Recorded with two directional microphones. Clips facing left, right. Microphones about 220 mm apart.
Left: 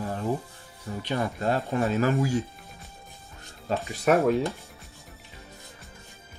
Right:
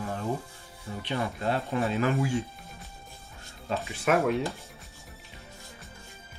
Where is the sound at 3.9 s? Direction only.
40° left (ahead or behind).